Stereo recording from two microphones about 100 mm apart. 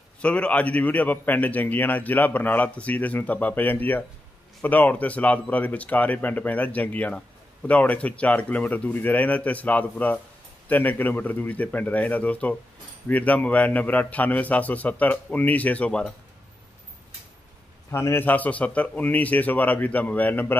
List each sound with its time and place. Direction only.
0.2 s speech: 10° left (ahead or behind)
17.9 s speech: 25° left (ahead or behind)